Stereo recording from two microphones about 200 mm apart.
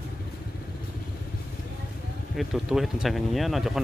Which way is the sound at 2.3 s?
Centre (ahead or behind).